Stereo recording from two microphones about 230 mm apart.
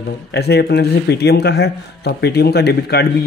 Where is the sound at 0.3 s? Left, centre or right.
Left.